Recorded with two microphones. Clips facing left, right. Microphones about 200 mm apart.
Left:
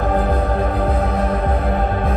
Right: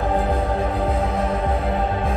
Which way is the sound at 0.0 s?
25° right (ahead or behind).